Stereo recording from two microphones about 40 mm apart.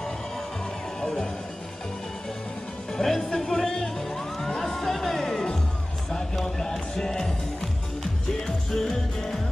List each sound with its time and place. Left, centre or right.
1.0 s music: centre
2.9 s music: centre